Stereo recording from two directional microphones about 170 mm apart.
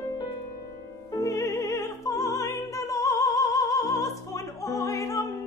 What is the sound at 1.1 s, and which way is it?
Music, 15° left (ahead or behind).